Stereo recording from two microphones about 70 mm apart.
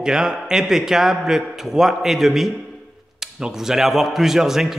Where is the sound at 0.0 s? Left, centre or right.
Centre.